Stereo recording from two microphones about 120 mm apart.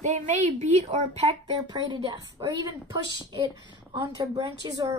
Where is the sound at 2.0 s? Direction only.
30° right (ahead or behind).